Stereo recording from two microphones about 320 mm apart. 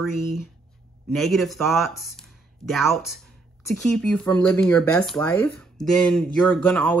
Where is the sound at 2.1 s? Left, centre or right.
Centre.